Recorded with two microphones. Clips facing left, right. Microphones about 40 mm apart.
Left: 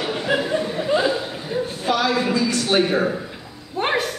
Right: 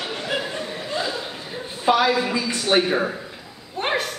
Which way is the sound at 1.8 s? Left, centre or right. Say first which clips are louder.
Right 3 dB; centre.